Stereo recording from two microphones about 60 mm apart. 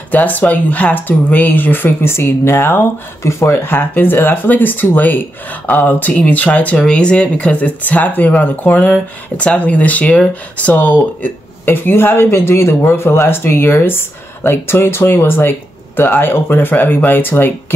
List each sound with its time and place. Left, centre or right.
0.1 s speech: left
3.2 s speech: left
3.6 s speech: left